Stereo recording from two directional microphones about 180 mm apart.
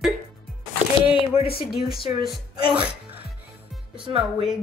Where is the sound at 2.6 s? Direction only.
30° right (ahead or behind).